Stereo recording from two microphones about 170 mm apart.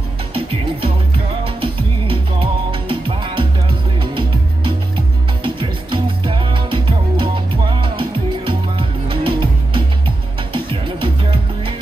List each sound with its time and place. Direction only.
0.3 s music: 35° right (ahead or behind)